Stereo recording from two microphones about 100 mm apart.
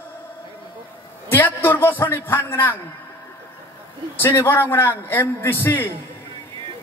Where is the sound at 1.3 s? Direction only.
20° left (ahead or behind).